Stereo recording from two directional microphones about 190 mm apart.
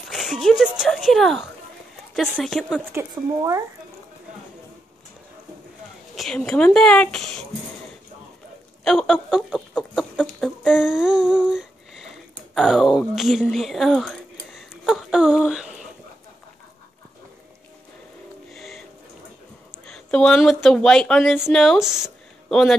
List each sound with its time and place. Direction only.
0.1 s speech: centre (ahead or behind)
2.9 s speech: 15° right (ahead or behind)
6.1 s speech: centre (ahead or behind)
8.8 s chicken: centre (ahead or behind)
18.5 s music: centre (ahead or behind)
19.9 s speech: 5° left (ahead or behind)